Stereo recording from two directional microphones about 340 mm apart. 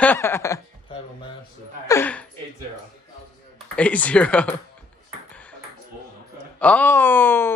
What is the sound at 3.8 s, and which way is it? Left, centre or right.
Speech, centre.